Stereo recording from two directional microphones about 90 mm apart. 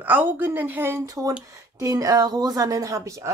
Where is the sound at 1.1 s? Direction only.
40° right (ahead or behind).